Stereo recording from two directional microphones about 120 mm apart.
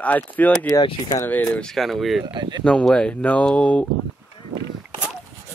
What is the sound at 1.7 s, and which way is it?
Speech, centre (ahead or behind).